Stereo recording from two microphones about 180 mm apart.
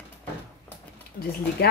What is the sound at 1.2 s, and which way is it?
Speech, 55° left (ahead or behind).